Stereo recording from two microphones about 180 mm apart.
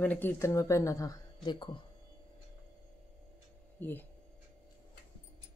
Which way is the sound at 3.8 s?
10° left (ahead or behind).